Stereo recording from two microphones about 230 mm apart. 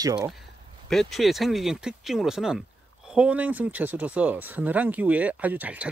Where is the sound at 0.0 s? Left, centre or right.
Centre.